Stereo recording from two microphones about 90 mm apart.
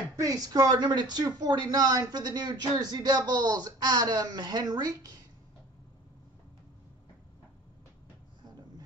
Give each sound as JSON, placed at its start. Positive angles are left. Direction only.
{"t": 0.1, "sound": "speech", "side_deg": -40}